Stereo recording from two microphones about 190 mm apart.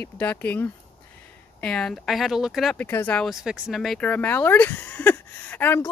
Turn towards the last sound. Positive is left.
turn(degrees=10)  # may be behind; listen again after turning